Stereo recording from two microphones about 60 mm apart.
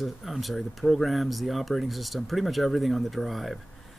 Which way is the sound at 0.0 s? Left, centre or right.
Centre.